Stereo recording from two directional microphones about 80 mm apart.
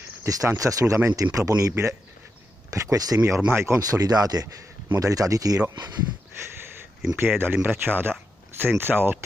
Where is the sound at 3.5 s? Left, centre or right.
Right.